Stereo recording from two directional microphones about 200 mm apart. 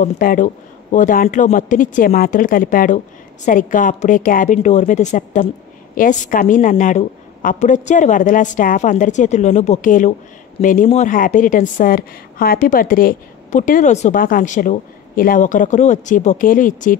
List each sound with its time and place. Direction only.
0.0 s a woman's voice: 40° left (ahead or behind)